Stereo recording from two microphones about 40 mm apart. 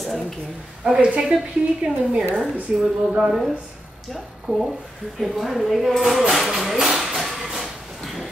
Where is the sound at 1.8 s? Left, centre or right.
Right.